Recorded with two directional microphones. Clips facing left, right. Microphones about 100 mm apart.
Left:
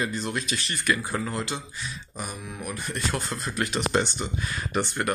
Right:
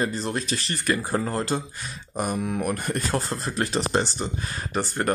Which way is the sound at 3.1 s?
35° right (ahead or behind).